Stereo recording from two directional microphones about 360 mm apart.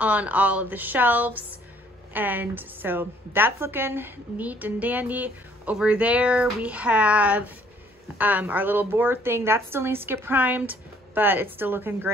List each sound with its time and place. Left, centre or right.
0.0 s a woman's voice: centre